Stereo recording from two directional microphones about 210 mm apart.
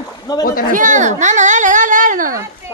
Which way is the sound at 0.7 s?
40° right (ahead or behind).